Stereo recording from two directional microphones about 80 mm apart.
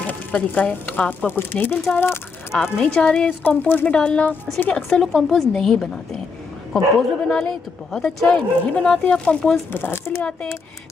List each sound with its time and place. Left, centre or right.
0.0 s speech: left
2.8 s a woman's voice: centre
4.8 s a woman's voice: centre
7.2 s a woman's voice: centre
9.7 s speech: left